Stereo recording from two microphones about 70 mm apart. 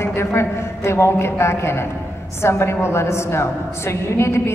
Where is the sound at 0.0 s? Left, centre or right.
Left.